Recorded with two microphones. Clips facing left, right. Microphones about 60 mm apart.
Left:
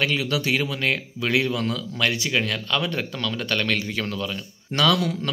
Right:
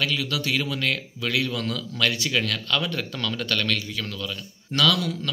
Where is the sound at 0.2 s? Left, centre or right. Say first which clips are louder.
Left 3 dB; centre.